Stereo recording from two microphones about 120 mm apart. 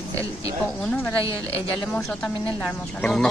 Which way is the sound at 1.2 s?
25° right (ahead or behind).